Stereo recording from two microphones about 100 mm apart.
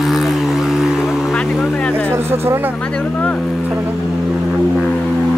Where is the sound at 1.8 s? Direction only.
10° left (ahead or behind).